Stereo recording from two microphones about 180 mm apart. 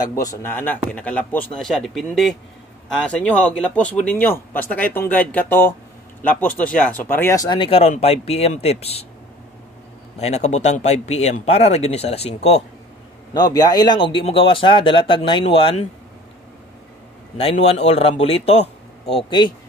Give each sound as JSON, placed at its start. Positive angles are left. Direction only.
{"t": 0.1, "sound": "a man's voice", "side_deg": 15}
{"t": 10.1, "sound": "speech", "side_deg": 35}
{"t": 13.3, "sound": "speech", "side_deg": 20}
{"t": 17.4, "sound": "speech", "side_deg": 35}